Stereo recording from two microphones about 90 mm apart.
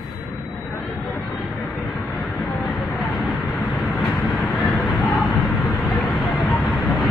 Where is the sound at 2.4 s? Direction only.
20° left (ahead or behind).